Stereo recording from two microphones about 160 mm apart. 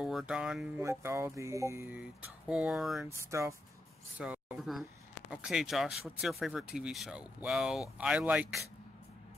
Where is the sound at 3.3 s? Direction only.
20° right (ahead or behind).